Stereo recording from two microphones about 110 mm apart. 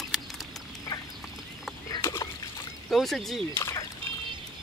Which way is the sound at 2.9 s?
Centre (ahead or behind).